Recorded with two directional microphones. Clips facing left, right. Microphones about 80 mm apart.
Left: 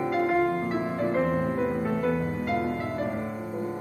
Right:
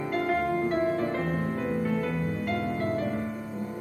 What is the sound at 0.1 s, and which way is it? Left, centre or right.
Music, centre.